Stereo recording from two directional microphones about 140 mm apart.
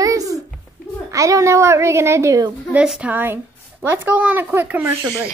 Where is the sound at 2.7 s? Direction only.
5° right (ahead or behind).